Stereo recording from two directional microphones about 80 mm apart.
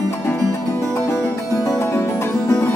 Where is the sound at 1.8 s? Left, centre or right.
Left.